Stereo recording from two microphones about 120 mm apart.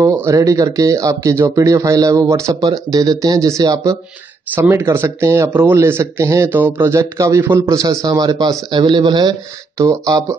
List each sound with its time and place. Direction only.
0.1 s speech: 20° right (ahead or behind)
4.6 s speech: 20° right (ahead or behind)